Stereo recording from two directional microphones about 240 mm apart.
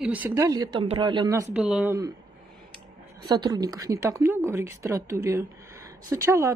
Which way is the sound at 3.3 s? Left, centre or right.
Centre.